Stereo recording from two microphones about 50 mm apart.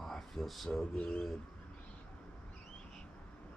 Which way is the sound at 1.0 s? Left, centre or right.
Left.